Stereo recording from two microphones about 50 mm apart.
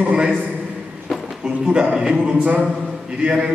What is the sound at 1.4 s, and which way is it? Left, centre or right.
A man's voice, centre.